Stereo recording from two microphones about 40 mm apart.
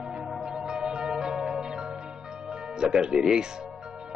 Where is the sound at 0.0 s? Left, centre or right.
Right.